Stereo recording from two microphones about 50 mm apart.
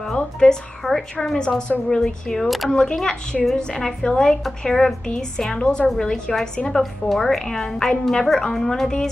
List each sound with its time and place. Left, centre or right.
0.0 s a woman's voice: centre
2.7 s a woman's voice: centre
6.8 s a woman's voice: centre